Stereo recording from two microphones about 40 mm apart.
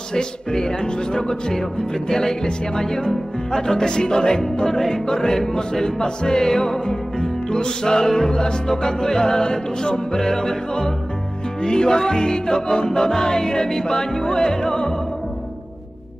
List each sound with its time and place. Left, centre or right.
0.1 s music: centre